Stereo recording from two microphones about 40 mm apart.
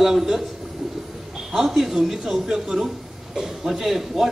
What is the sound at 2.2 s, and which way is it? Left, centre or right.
A woman's voice, centre.